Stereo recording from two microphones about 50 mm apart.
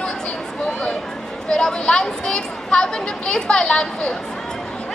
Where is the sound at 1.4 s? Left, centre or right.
Centre.